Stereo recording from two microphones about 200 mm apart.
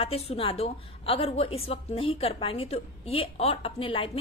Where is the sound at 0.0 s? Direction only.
30° left (ahead or behind).